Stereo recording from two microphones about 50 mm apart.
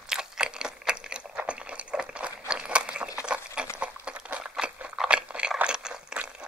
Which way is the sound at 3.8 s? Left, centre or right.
Right.